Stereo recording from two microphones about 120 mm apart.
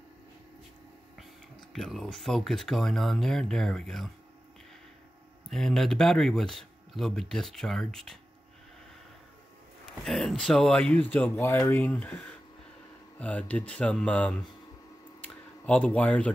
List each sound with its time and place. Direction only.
1.7 s speech: centre (ahead or behind)
5.5 s speech: 5° left (ahead or behind)
10.0 s speech: centre (ahead or behind)
15.2 s a sound: 10° left (ahead or behind)